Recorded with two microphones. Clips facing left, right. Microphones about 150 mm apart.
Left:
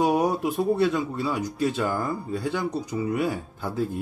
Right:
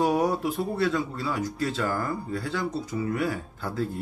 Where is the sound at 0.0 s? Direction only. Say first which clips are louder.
Left 2 dB; 20° left (ahead or behind).